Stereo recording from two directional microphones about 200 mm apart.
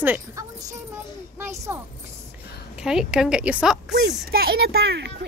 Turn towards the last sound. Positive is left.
turn(degrees=-55)  # may be behind; listen again after turning